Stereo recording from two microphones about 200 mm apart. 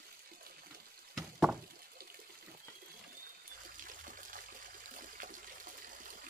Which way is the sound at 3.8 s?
40° right (ahead or behind).